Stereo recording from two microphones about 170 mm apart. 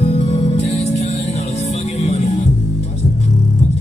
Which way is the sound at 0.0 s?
40° left (ahead or behind).